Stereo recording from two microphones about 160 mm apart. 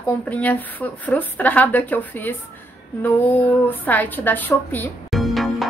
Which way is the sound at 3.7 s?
10° left (ahead or behind).